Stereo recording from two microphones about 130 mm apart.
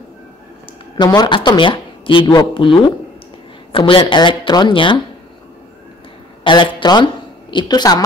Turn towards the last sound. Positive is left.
turn(degrees=30)  # may be behind; listen again after turning